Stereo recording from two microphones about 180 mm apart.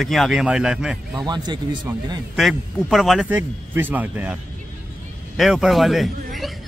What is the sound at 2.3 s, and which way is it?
A man's voice, centre (ahead or behind).